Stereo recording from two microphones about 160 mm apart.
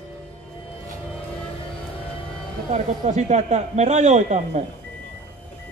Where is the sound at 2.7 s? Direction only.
45° right (ahead or behind).